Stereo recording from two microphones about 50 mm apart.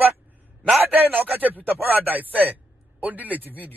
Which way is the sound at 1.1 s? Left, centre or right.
Right.